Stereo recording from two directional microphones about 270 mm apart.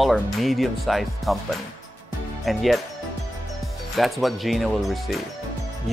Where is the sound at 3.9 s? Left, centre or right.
Centre.